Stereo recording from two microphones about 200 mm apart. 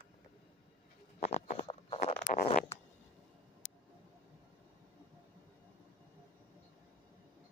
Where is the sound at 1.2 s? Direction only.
30° left (ahead or behind).